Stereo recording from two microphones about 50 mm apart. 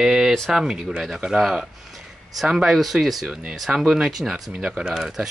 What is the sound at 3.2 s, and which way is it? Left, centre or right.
Speech, right.